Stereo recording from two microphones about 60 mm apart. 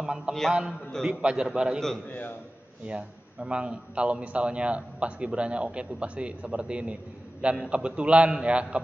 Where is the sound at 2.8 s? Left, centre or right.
Centre.